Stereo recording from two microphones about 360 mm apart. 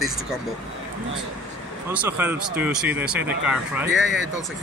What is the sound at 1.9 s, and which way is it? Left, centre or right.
Speech, centre.